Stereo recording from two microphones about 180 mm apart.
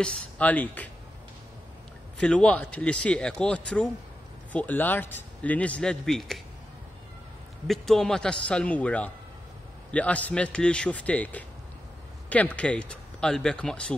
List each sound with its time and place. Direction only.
0.0 s speech: 10° left (ahead or behind)
2.1 s speech: 5° left (ahead or behind)
7.6 s speech: centre (ahead or behind)